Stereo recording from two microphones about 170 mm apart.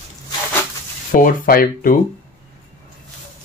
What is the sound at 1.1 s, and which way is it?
Speech, 50° left (ahead or behind).